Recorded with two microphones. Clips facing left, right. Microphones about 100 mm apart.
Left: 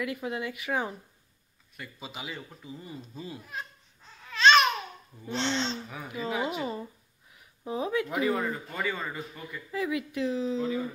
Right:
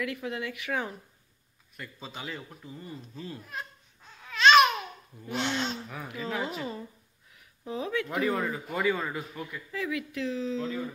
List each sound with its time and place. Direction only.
0.0 s speech: 15° left (ahead or behind)
3.2 s babbling: 10° left (ahead or behind)
5.3 s speech: 10° right (ahead or behind)
5.9 s speech: centre (ahead or behind)
7.6 s speech: 15° left (ahead or behind)
8.1 s speech: centre (ahead or behind)
9.7 s speech: 15° left (ahead or behind)